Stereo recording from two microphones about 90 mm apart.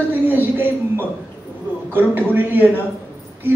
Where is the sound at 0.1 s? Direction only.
20° right (ahead or behind).